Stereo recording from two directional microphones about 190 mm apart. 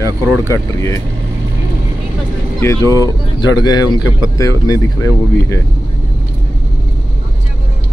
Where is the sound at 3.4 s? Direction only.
20° left (ahead or behind).